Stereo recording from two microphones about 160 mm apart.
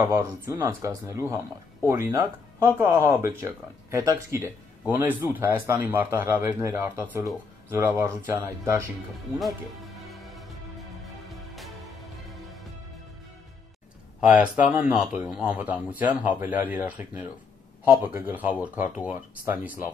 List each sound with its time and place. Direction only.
0.0 s speech: 15° right (ahead or behind)
10.0 s music: centre (ahead or behind)
14.2 s speech: 5° right (ahead or behind)